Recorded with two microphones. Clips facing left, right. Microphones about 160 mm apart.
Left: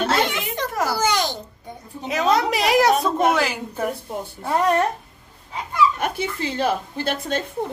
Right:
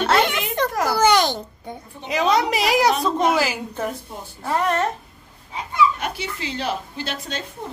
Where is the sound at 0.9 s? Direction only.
65° right (ahead or behind).